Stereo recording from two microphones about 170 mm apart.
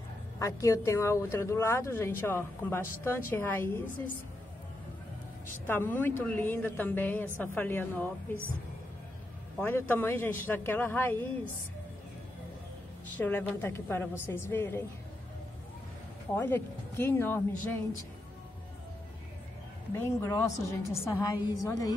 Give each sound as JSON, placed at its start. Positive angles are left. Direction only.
{"t": 0.4, "sound": "speech", "side_deg": 20}
{"t": 5.7, "sound": "speech", "side_deg": 10}
{"t": 9.6, "sound": "speech", "side_deg": 10}
{"t": 13.2, "sound": "speech", "side_deg": 10}
{"t": 16.3, "sound": "speech", "side_deg": 15}
{"t": 20.0, "sound": "a woman's voice", "side_deg": 20}